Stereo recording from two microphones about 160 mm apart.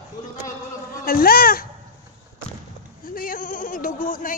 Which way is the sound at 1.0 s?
65° left (ahead or behind).